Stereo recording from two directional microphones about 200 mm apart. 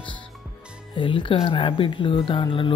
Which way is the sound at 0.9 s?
25° left (ahead or behind).